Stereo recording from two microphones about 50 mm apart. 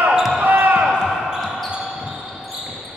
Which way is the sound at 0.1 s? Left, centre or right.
Centre.